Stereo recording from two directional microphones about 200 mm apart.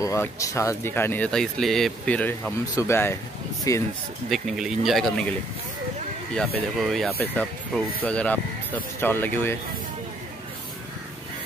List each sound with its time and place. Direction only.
0.0 s speech: 15° left (ahead or behind)
4.3 s speech: centre (ahead or behind)
6.8 s speech: centre (ahead or behind)